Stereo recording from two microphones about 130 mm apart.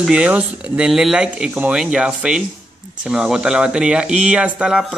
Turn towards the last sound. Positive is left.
turn(degrees=-5)  # may be behind; listen again after turning